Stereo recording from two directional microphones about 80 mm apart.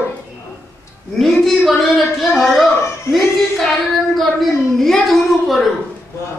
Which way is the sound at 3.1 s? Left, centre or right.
Left.